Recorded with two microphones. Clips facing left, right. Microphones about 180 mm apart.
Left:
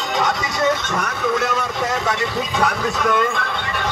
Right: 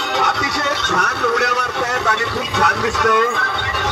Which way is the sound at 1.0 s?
70° right (ahead or behind).